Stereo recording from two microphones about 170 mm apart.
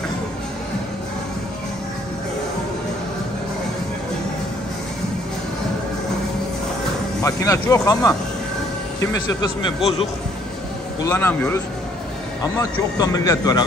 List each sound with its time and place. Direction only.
7.2 s speech: 15° left (ahead or behind)
11.1 s speech: 15° left (ahead or behind)